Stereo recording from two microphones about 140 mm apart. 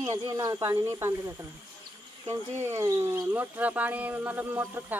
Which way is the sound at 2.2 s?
20° right (ahead or behind).